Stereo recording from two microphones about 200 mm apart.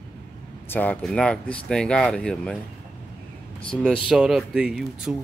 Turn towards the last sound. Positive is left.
turn(degrees=-5)  # may be behind; listen again after turning